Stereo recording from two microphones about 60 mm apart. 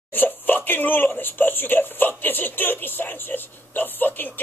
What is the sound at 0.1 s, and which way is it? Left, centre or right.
Speech, left.